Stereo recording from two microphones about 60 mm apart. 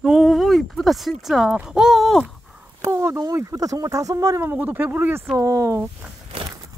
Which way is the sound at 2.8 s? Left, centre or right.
Right.